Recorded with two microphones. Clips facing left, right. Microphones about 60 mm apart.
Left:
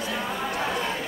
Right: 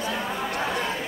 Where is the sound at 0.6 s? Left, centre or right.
Centre.